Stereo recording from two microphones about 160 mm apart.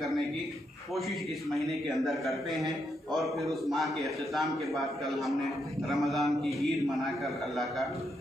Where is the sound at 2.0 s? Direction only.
Centre (ahead or behind).